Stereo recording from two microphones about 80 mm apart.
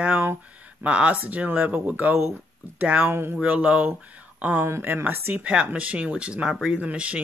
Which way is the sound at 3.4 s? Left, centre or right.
Centre.